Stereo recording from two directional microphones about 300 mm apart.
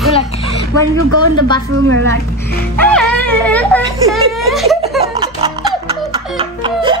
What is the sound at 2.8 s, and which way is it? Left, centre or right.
Speech, centre.